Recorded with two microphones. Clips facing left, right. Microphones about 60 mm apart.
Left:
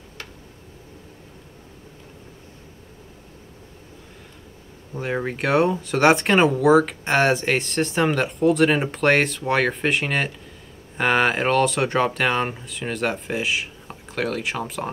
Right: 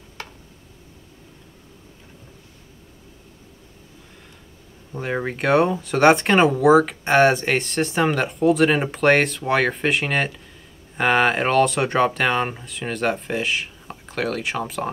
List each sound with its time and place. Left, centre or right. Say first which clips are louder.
4.9 s speech: even; centre